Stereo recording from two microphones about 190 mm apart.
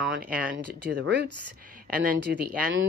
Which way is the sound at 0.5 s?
60° right (ahead or behind).